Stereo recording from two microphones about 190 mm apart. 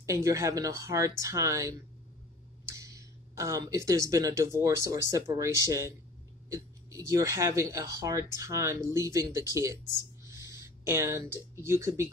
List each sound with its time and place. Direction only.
0.0 s speech: 15° right (ahead or behind)
10.2 s a sound: 15° right (ahead or behind)
11.6 s speech: 15° right (ahead or behind)